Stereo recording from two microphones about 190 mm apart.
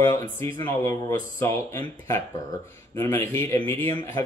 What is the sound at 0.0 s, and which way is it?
Speech, 15° left (ahead or behind).